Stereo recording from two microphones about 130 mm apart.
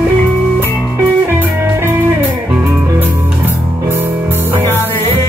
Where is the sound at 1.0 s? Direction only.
15° right (ahead or behind).